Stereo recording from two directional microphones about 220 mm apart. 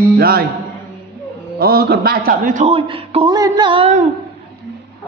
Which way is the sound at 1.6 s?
45° right (ahead or behind).